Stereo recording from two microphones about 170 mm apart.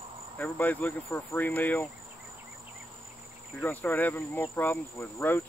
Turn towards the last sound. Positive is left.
turn(degrees=15)  # may be behind; listen again after turning